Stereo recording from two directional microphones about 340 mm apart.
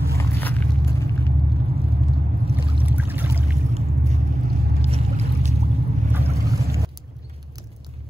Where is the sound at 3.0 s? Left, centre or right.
Centre.